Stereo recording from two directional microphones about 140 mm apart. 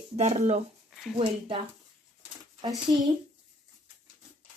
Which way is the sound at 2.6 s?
30° right (ahead or behind).